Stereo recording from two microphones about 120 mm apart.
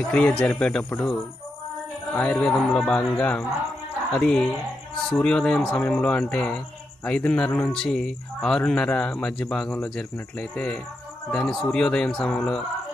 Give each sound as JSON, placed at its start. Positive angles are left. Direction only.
{"t": 0.1, "sound": "speech", "side_deg": 5}
{"t": 2.1, "sound": "speech", "side_deg": 10}